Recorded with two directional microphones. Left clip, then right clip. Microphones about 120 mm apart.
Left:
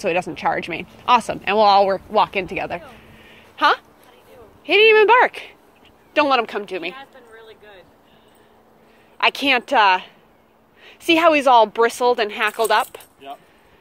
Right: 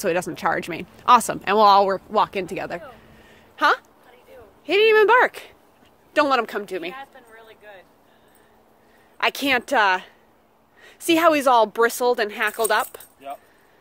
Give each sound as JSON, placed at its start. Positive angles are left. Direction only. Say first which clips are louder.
{"t": 0.0, "sound": "speech", "louder": "left 2 dB", "side_deg": -90}
{"t": 2.1, "sound": "speech", "louder": "left 3 dB", "side_deg": -65}
{"t": 3.2, "sound": "a sound", "louder": "left 2 dB", "side_deg": -60}
{"t": 4.6, "sound": "speech", "louder": "left 3 dB", "side_deg": -55}
{"t": 7.0, "sound": "a sound", "louder": "even", "side_deg": -20}
{"t": 9.2, "sound": "a woman's voice", "louder": "left 4 dB", "side_deg": -60}